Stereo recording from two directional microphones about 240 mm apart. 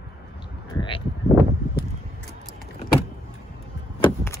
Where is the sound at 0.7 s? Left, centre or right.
Left.